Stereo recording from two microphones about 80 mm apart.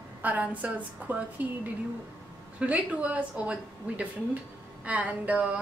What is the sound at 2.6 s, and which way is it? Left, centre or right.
A woman's voice, centre.